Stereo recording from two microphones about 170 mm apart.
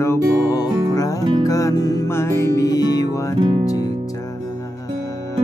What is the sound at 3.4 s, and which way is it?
Music, 30° right (ahead or behind).